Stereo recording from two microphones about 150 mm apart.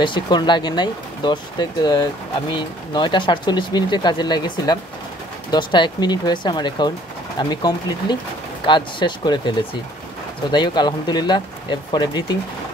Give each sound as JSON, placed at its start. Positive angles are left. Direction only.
{"t": 0.0, "sound": "speech", "side_deg": 30}